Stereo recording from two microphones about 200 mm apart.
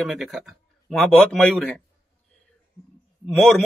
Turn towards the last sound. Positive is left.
turn(degrees=0)  # may be behind; listen again after turning